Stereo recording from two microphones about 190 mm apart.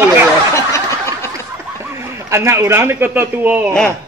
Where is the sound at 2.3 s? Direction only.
15° right (ahead or behind).